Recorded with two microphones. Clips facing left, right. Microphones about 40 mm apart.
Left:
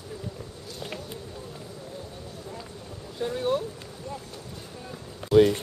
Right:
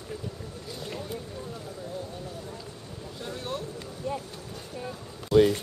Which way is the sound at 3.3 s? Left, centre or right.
Centre.